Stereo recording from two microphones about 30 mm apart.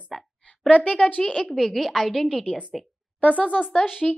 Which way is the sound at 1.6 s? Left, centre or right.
Centre.